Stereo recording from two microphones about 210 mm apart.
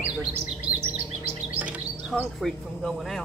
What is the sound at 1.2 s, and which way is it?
Bird, 10° right (ahead or behind).